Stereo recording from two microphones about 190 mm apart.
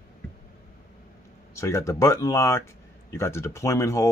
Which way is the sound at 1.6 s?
15° left (ahead or behind).